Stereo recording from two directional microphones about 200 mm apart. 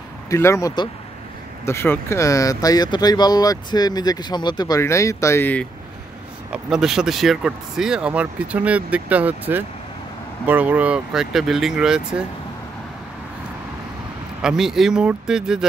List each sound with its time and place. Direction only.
0.3 s speech: 15° left (ahead or behind)
6.5 s speech: centre (ahead or behind)
14.4 s speech: centre (ahead or behind)